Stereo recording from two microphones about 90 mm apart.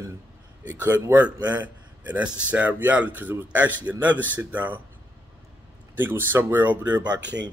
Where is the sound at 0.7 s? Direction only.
20° right (ahead or behind).